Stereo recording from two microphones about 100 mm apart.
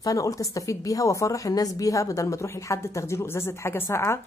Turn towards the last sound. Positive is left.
turn(degrees=25)  # may be behind; listen again after turning